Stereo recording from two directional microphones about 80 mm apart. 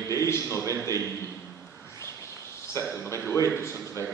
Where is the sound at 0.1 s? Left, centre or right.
Left.